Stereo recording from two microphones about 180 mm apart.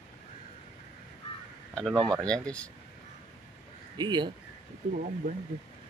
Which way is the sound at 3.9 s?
25° right (ahead or behind).